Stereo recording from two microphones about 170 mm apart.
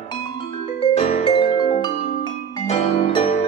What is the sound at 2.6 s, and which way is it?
Piano, 35° left (ahead or behind).